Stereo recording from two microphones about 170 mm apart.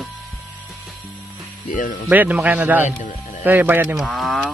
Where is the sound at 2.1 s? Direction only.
10° right (ahead or behind).